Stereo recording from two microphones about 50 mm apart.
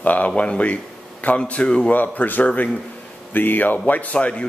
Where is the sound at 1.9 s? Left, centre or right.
Left.